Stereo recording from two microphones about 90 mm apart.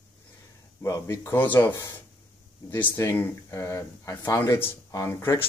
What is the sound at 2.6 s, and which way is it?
Speech, 20° left (ahead or behind).